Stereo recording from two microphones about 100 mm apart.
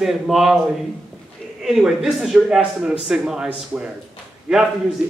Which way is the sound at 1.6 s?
5° right (ahead or behind).